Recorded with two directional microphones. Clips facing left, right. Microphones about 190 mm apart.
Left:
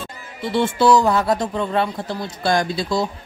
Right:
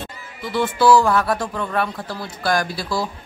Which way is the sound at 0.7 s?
20° left (ahead or behind).